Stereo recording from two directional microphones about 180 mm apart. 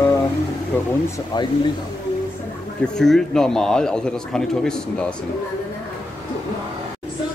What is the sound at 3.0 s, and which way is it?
A man's voice, 5° left (ahead or behind).